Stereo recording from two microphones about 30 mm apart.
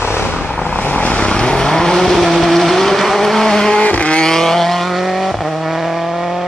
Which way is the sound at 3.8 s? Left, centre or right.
Left.